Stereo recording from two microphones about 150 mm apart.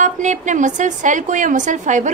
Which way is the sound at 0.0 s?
55° right (ahead or behind).